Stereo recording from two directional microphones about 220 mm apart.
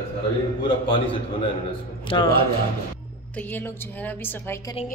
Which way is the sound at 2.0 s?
20° left (ahead or behind).